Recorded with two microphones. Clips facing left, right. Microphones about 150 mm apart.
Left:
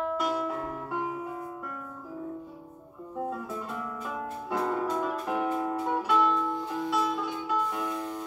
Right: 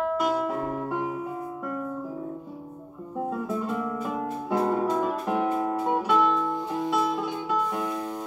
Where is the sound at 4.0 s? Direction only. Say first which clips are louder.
Right 5 dB; 30° right (ahead or behind).